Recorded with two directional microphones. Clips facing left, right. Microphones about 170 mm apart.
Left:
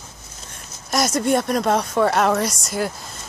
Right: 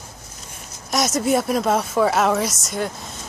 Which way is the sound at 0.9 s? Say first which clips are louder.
Even; centre (ahead or behind).